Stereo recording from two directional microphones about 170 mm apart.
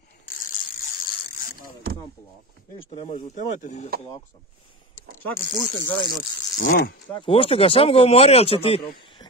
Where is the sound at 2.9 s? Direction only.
50° left (ahead or behind).